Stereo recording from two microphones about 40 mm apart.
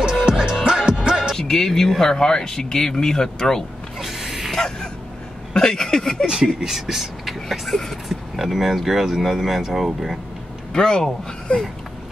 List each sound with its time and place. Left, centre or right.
0.2 s music: right
1.3 s music: centre
1.7 s speech: centre
4.0 s music: centre
4.6 s speech: centre
6.2 s speech: centre
8.1 s speech: centre
10.7 s speech: centre
11.5 s a sound: left